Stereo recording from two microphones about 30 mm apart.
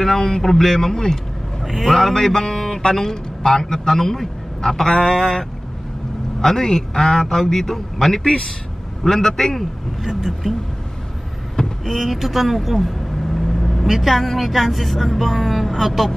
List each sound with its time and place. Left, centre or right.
0.0 s a man's voice: centre
1.6 s speech: centre
1.9 s music: centre
2.9 s a man's voice: centre
4.9 s speech: left
6.4 s a man's voice: left
10.4 s speech: centre
11.8 s speech: centre